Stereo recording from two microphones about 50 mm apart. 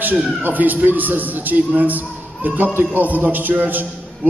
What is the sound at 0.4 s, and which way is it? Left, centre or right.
A man's voice, right.